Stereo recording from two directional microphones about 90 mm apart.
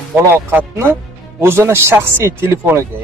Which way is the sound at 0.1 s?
20° right (ahead or behind).